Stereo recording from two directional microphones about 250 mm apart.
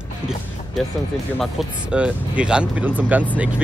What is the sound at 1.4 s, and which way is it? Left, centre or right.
Speech, centre.